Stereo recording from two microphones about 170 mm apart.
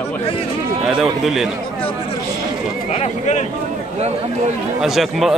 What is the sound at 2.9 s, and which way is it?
Speech, 40° left (ahead or behind).